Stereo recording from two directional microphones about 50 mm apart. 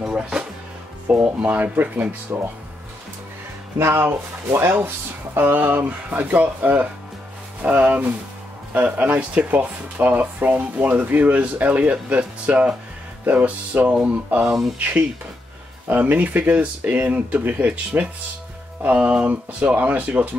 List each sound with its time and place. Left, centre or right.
0.0 s music: centre
1.2 s speech: right
3.7 s speech: right
5.4 s speech: right
14.4 s speech: centre
14.8 s speech: right